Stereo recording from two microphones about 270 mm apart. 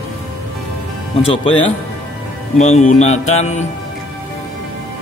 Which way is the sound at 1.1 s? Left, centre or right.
Centre.